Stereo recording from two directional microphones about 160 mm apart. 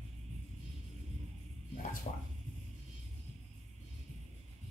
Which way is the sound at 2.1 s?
50° left (ahead or behind).